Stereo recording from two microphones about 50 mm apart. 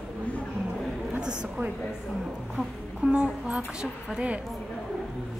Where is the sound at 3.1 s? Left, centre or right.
Centre.